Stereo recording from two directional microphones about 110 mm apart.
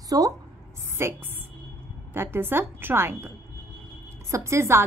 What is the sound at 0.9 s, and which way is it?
A woman's voice, 20° right (ahead or behind).